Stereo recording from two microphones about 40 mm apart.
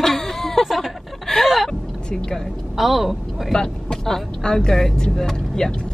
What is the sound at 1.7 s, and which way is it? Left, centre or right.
Vehicle, centre.